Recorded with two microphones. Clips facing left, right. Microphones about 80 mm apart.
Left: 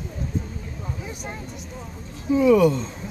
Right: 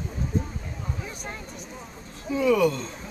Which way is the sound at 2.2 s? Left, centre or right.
Centre.